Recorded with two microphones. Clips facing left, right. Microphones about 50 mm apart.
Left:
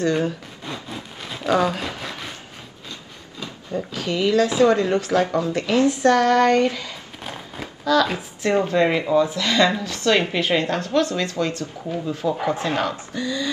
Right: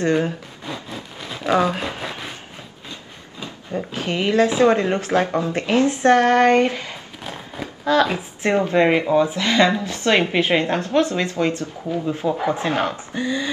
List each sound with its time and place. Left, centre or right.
0.0 s speech: right
0.7 s a sound: centre
1.7 s speech: right
3.3 s speech: right